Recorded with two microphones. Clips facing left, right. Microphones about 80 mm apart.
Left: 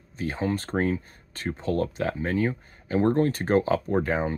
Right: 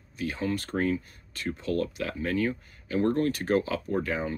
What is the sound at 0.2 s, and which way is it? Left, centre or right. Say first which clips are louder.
Speech: left 2 dB; left.